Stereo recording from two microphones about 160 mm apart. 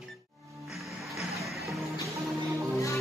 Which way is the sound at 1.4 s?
Centre (ahead or behind).